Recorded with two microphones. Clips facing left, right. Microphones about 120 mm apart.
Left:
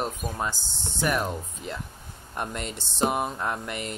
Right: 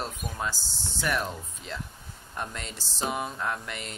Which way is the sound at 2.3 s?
15° left (ahead or behind).